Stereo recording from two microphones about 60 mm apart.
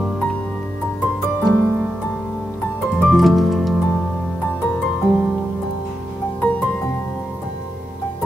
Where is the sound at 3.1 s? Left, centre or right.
Centre.